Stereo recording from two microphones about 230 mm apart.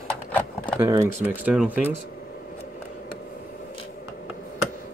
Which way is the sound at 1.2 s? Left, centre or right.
Centre.